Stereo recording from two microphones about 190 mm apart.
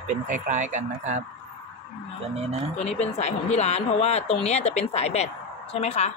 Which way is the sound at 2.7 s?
35° left (ahead or behind).